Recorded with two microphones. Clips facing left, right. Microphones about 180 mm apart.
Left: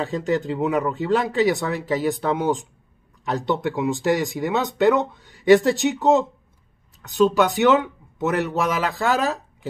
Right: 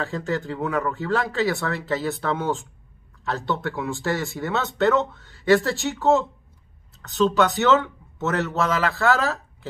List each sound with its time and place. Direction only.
0.0 s speech: 20° left (ahead or behind)